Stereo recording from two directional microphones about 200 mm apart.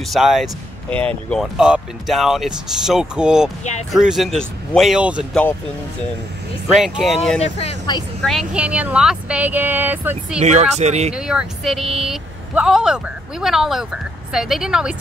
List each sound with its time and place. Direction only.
0.1 s speech: centre (ahead or behind)
6.7 s speech: centre (ahead or behind)
7.3 s speech: 30° left (ahead or behind)
8.2 s speech: centre (ahead or behind)
10.4 s speech: 35° right (ahead or behind)
11.1 s speech: 5° right (ahead or behind)